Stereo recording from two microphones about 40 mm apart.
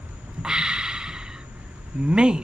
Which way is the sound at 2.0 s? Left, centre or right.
Right.